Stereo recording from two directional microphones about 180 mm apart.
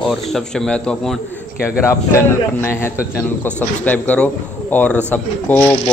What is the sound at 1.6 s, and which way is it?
A man's voice, 15° left (ahead or behind).